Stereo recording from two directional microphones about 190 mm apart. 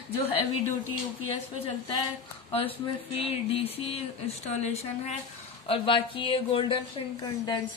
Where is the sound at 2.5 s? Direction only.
30° left (ahead or behind).